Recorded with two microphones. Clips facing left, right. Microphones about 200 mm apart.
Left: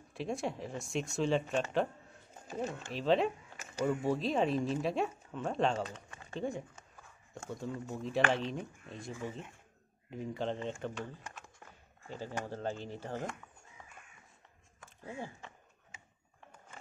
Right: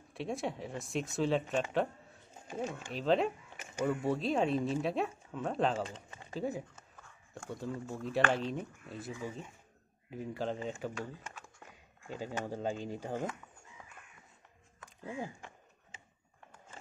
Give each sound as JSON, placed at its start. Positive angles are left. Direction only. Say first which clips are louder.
{"t": 0.1, "sound": "speech", "louder": "even", "side_deg": 0}
{"t": 5.9, "sound": "speech", "louder": "even", "side_deg": -25}
{"t": 6.3, "sound": "a sound", "louder": "right 1 dB", "side_deg": -5}
{"t": 7.4, "sound": "speech", "louder": "even", "side_deg": 0}